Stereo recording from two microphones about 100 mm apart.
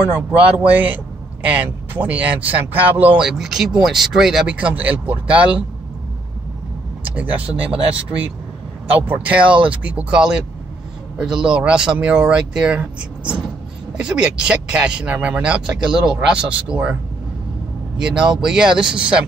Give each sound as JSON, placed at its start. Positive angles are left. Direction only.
{"t": 0.1, "sound": "a man's voice", "side_deg": -15}
{"t": 3.3, "sound": "speech", "side_deg": -5}
{"t": 7.1, "sound": "speech", "side_deg": -15}
{"t": 8.9, "sound": "speech", "side_deg": -15}
{"t": 17.9, "sound": "speech", "side_deg": -10}